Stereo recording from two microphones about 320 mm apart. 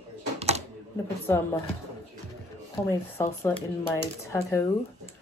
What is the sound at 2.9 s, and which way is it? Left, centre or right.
Speech, centre.